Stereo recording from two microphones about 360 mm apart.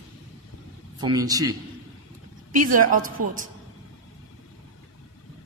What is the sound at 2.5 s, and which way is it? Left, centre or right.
Speech, right.